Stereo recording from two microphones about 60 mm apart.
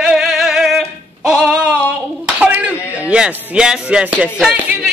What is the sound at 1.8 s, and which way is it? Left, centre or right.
Clapping, right.